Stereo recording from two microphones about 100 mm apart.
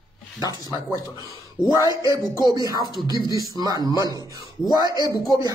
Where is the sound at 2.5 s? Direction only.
40° right (ahead or behind).